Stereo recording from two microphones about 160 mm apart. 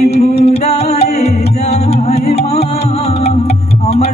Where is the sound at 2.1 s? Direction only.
40° left (ahead or behind).